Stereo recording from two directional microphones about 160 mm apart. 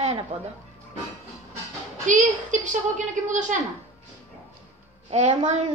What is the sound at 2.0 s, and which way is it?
A woman's voice, 50° right (ahead or behind).